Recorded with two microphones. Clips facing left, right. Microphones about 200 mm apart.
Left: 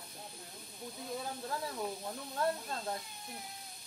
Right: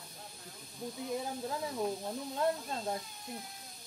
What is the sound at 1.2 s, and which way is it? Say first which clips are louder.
Speech: right 3 dB; 20° right (ahead or behind).